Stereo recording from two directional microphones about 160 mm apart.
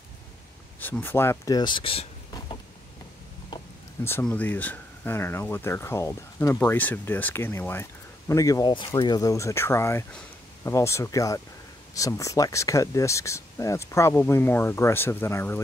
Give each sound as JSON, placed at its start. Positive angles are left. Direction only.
{"t": 0.7, "sound": "speech", "side_deg": 10}
{"t": 4.0, "sound": "speech", "side_deg": 10}